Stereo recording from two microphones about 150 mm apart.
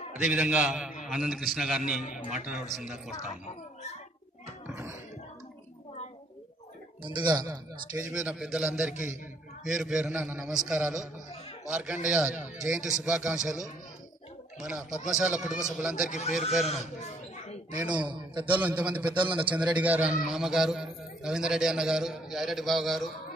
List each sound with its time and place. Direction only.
0.2 s a man's voice: 5° right (ahead or behind)
7.0 s speech: 30° right (ahead or behind)
8.1 s a man's voice: 5° right (ahead or behind)
14.6 s a man's voice: 5° right (ahead or behind)
16.1 s a man's voice: 55° left (ahead or behind)
17.9 s a man's voice: 30° right (ahead or behind)
18.5 s a man's voice: 10° right (ahead or behind)
19.1 s a man's voice: 35° right (ahead or behind)
19.5 s a man's voice: 10° right (ahead or behind)